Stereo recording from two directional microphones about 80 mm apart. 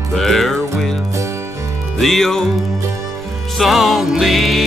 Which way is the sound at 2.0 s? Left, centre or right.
Centre.